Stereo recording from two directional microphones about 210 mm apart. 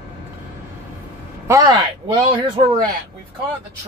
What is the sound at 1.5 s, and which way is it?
Speech, 20° right (ahead or behind).